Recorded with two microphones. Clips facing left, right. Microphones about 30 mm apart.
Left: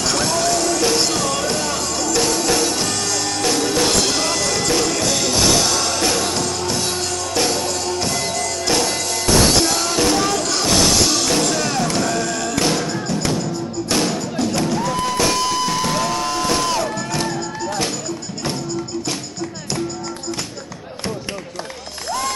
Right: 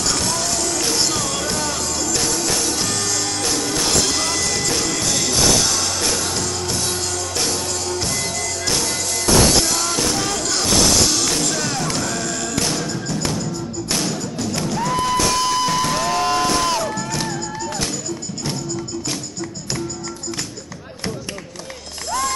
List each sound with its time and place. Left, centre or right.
0.0 s music: centre
14.7 s music: centre
16.2 s music: centre
16.4 s music: centre